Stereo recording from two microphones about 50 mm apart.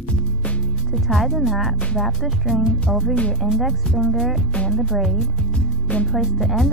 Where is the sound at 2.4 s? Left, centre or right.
Centre.